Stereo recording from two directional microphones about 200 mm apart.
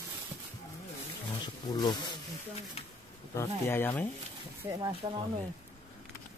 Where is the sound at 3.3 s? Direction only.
10° left (ahead or behind).